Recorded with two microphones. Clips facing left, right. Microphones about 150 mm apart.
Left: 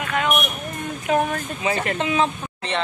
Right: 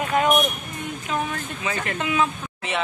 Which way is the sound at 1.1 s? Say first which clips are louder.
Left 7 dB; 50° left (ahead or behind).